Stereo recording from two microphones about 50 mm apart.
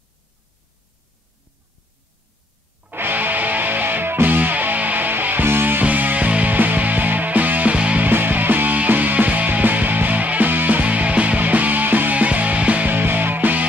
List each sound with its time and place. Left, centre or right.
2.9 s music: right
5.9 s music: right
7.7 s music: right
8.0 s music: right